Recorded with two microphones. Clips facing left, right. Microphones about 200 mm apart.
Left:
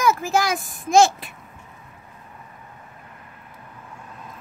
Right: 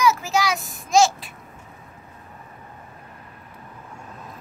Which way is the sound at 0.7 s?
55° left (ahead or behind).